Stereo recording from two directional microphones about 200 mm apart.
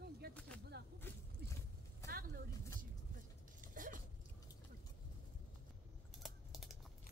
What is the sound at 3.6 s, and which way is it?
Zipper, 40° right (ahead or behind).